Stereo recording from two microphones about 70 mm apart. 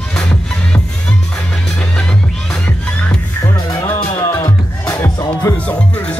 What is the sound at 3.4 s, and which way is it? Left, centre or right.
Music, left.